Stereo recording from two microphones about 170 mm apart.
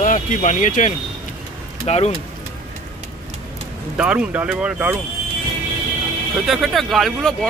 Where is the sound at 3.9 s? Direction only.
5° right (ahead or behind).